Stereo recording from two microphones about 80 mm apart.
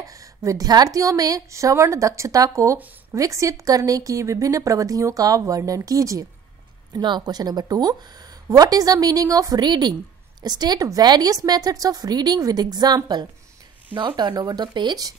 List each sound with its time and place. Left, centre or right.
0.0 s a sound: right
0.9 s a woman's voice: right
7.0 s speech: right
13.9 s speech: right
14.4 s speech: right